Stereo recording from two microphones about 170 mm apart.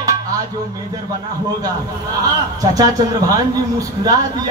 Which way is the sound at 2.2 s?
20° right (ahead or behind).